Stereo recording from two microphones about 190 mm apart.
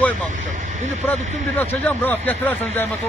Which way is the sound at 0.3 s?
40° right (ahead or behind).